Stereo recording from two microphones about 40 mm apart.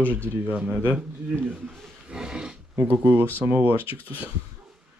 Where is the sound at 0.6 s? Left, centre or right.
Right.